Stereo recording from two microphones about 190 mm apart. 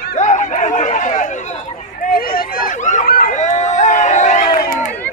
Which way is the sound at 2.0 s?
50° left (ahead or behind).